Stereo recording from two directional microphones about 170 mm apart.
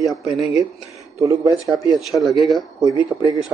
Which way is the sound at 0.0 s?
Centre (ahead or behind).